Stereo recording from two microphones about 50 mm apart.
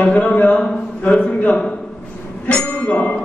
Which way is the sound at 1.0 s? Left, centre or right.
Left.